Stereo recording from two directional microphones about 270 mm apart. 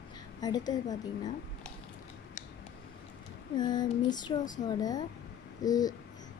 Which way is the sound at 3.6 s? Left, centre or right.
Centre.